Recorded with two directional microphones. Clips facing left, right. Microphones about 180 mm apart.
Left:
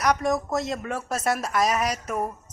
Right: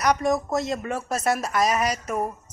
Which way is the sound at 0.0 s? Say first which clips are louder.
Right 1 dB; centre (ahead or behind).